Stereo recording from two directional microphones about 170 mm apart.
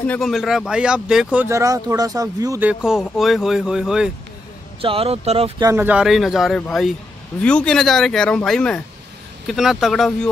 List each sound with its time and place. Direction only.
0.0 s a man's voice: 10° left (ahead or behind)
0.3 s speech: centre (ahead or behind); by 2.6 s 20° right (ahead or behind)
2.6 s a man's voice: 5° right (ahead or behind)
4.8 s speech: 35° right (ahead or behind)
5.6 s a man's voice: 15° right (ahead or behind); by 10.3 s centre (ahead or behind)